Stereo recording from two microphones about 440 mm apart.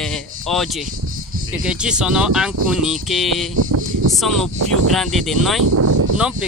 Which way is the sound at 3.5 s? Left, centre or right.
Right.